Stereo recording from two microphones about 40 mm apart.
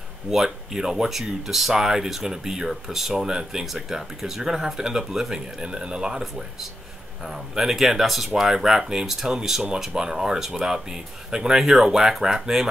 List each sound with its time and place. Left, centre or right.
0.3 s speech: centre